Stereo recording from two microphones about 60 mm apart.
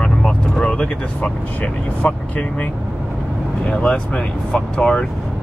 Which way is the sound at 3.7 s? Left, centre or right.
Centre.